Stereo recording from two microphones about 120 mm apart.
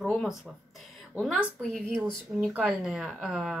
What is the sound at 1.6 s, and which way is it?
Speech, 5° left (ahead or behind).